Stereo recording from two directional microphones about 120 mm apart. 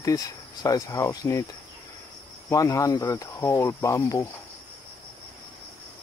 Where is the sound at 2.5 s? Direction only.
25° left (ahead or behind).